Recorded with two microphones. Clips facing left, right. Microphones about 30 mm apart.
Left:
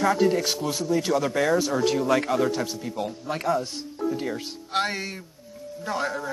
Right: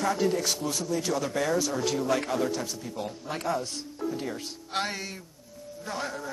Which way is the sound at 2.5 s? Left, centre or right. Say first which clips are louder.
Left 4 dB; centre.